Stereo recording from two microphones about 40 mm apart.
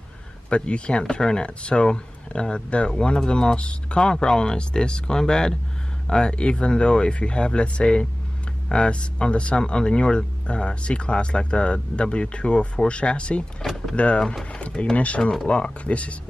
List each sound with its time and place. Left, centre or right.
0.5 s speech: left